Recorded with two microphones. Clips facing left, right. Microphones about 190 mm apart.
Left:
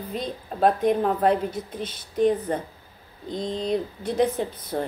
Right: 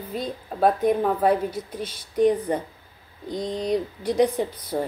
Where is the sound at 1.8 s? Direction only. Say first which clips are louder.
Even; 50° left (ahead or behind).